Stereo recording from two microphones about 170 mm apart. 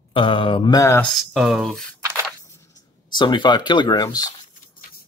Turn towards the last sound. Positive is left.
turn(degrees=20)  # may be behind; listen again after turning